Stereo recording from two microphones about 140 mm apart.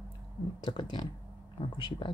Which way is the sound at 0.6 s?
35° left (ahead or behind).